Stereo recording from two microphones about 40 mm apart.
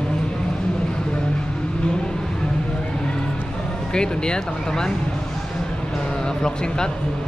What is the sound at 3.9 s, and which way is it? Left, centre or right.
Speech, centre.